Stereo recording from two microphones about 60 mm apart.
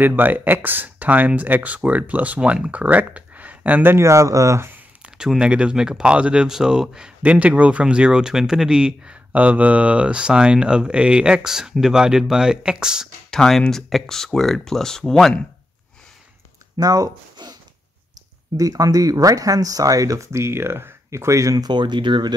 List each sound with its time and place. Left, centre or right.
0.0 s speech: right
4.0 s speech: right
5.0 s speech: centre
7.2 s speech: right
13.3 s speech: centre
16.8 s speech: right
18.6 s speech: right
20.2 s speech: right